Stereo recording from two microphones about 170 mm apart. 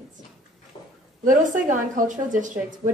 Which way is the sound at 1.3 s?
50° right (ahead or behind).